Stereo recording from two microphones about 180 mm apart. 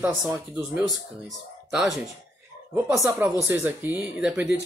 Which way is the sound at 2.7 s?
15° right (ahead or behind).